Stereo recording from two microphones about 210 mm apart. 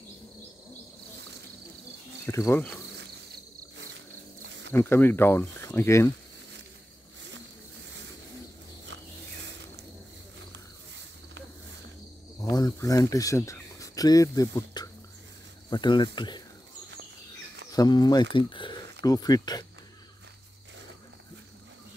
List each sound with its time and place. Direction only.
2.2 s speech: 10° left (ahead or behind)
3.7 s a sound: 60° right (ahead or behind)
4.7 s speech: 10° left (ahead or behind)
12.4 s speech: 15° left (ahead or behind)
17.6 s speech: 20° left (ahead or behind)